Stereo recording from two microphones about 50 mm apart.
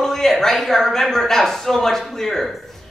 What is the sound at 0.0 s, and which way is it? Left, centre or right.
Speech, centre.